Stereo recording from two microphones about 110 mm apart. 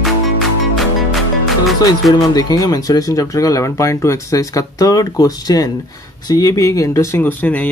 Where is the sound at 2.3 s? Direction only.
35° left (ahead or behind); by 7.5 s 15° left (ahead or behind).